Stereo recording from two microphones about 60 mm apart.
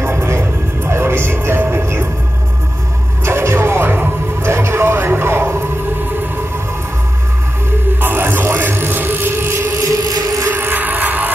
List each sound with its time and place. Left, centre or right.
0.0 s music: right
3.3 s music: right
8.0 s music: right
10.5 s music: right